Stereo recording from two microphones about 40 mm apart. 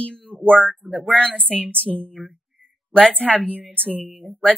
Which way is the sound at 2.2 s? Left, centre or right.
Centre.